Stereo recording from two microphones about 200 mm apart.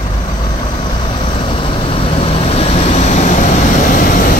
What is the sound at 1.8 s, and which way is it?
Vehicle, 25° left (ahead or behind).